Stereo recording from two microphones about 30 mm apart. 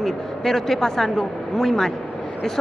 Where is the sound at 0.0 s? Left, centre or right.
Centre.